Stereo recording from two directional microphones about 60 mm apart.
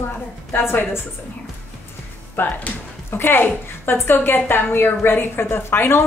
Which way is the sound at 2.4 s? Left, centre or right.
Left.